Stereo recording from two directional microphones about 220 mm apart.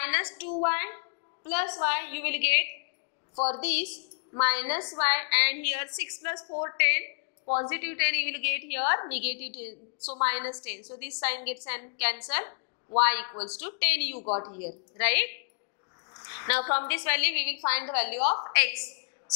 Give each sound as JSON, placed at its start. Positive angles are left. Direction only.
{"t": 0.0, "sound": "a sound", "side_deg": 10}
{"t": 0.6, "sound": "a woman's voice", "side_deg": 15}
{"t": 3.3, "sound": "speech", "side_deg": 30}
{"t": 4.4, "sound": "a woman's voice", "side_deg": 10}
{"t": 6.3, "sound": "a woman's voice", "side_deg": 25}
{"t": 6.8, "sound": "a woman's voice", "side_deg": 15}
{"t": 7.4, "sound": "a woman's voice", "side_deg": 30}
{"t": 7.7, "sound": "a woman's voice", "side_deg": 15}
{"t": 14.1, "sound": "speech", "side_deg": 30}
{"t": 15.0, "sound": "a woman's voice", "side_deg": 10}
{"t": 16.2, "sound": "a sound", "side_deg": 20}
{"t": 16.7, "sound": "a woman's voice", "side_deg": 10}